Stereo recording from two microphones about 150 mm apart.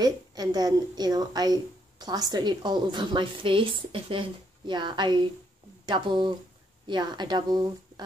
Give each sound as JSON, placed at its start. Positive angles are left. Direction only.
{"t": 0.0, "sound": "a woman's voice", "side_deg": -25}